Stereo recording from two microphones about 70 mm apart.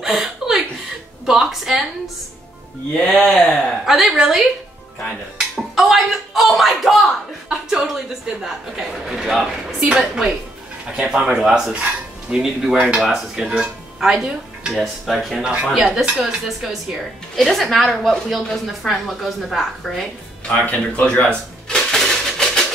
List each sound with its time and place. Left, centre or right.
0.0 s chuckle: centre
1.2 s a woman's voice: centre
3.8 s a woman's voice: centre
11.7 s speech: centre
12.4 s a man's voice: centre
20.4 s speech: centre
21.6 s a sound: centre